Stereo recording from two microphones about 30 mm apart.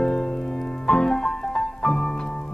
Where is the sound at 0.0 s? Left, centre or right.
Left.